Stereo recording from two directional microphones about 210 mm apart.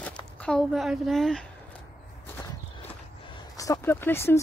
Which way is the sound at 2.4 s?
15° left (ahead or behind).